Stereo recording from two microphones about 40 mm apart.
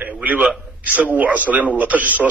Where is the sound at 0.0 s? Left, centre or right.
Right.